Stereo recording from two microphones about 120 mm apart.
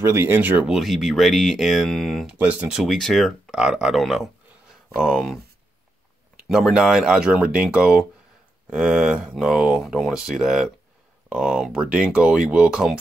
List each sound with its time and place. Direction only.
0.0 s speech: 20° right (ahead or behind)
0.7 s speech: centre (ahead or behind)
2.2 s speech: 10° right (ahead or behind)